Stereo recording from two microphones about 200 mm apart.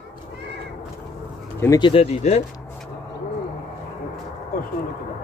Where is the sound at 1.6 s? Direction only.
20° left (ahead or behind).